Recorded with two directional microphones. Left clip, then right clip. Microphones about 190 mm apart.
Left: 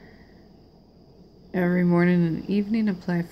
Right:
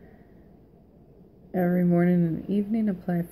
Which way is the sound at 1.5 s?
30° left (ahead or behind).